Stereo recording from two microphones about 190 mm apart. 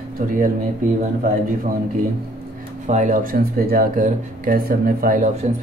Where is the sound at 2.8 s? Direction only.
40° right (ahead or behind).